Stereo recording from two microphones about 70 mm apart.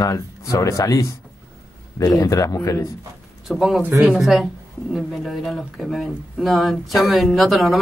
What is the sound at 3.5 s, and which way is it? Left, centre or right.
Speech, centre.